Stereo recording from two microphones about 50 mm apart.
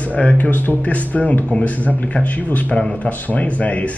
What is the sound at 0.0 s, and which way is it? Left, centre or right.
A man's voice, left.